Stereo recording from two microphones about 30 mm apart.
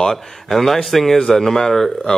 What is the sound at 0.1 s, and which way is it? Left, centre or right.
Speech, centre.